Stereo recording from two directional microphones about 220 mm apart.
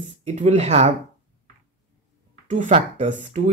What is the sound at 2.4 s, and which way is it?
Speech, 35° right (ahead or behind).